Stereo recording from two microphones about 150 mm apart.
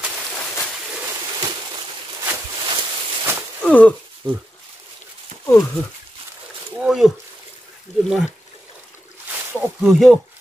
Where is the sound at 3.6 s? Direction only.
10° left (ahead or behind).